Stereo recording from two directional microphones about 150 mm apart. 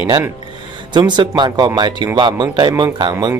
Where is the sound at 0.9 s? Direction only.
30° right (ahead or behind).